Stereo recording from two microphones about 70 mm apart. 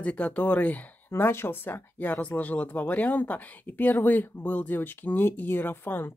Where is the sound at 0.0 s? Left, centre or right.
Centre.